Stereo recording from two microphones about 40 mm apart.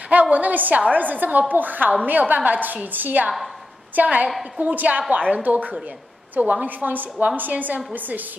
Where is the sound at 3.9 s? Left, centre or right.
Right.